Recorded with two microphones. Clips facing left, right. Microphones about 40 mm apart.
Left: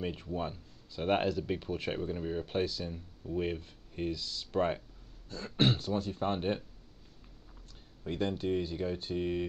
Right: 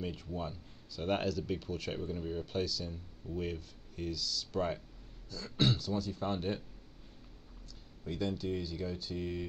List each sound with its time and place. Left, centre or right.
0.0 s speech: left
8.0 s speech: left